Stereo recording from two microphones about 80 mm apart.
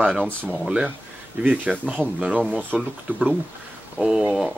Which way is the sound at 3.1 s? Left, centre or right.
Right.